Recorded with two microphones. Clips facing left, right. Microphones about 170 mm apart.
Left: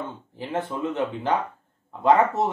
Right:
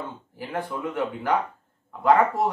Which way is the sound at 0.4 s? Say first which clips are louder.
Left 2 dB; 20° left (ahead or behind).